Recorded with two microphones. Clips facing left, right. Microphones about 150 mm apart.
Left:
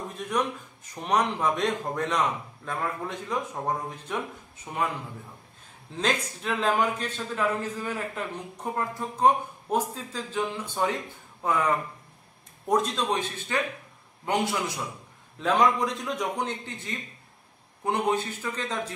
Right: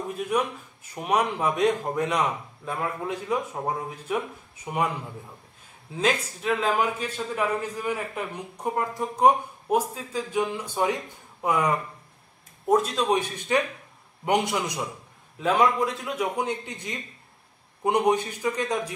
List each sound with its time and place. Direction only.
0.1 s a man's voice: 10° right (ahead or behind)
5.9 s a man's voice: 5° right (ahead or behind)
12.6 s a man's voice: 5° right (ahead or behind)